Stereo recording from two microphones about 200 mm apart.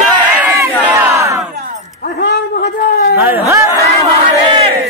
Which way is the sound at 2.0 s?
55° left (ahead or behind).